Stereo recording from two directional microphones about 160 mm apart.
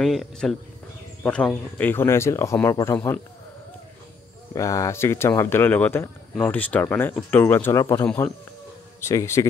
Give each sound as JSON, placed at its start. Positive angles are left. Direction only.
{"t": 0.0, "sound": "speech", "side_deg": 0}
{"t": 4.6, "sound": "speech", "side_deg": 20}